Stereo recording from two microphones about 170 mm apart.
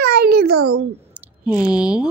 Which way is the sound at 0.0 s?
70° right (ahead or behind).